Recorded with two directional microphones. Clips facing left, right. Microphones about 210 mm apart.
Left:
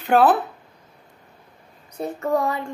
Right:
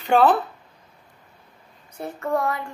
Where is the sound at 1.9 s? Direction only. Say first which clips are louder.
Left 3 dB; 20° left (ahead or behind).